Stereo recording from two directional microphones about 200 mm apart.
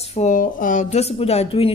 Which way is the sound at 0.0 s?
35° left (ahead or behind).